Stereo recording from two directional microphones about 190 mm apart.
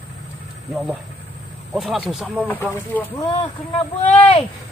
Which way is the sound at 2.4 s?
10° left (ahead or behind).